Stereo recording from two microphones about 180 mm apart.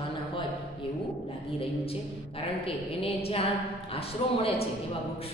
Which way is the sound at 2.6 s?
30° left (ahead or behind).